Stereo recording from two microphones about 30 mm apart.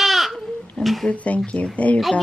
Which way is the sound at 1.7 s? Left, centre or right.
Left.